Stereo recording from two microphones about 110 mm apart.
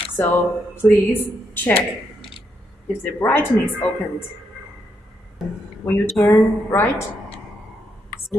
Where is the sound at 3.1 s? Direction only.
20° left (ahead or behind).